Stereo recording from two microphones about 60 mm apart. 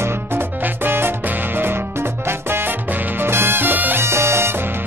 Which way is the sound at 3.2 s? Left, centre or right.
Right.